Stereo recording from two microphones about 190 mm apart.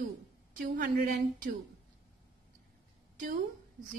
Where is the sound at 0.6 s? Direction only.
45° right (ahead or behind).